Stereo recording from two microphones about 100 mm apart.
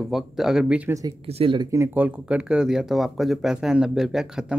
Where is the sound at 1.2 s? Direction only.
65° right (ahead or behind).